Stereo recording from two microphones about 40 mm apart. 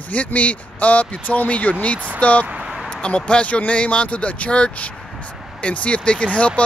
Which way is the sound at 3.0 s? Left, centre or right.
Left.